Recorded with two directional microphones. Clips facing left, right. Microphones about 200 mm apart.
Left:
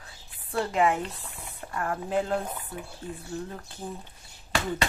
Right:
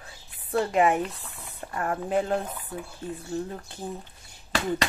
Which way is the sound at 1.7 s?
30° right (ahead or behind).